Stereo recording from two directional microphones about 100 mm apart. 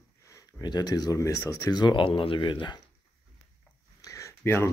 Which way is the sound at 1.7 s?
50° left (ahead or behind).